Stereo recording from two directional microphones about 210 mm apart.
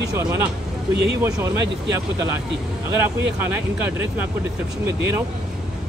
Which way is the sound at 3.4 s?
10° right (ahead or behind).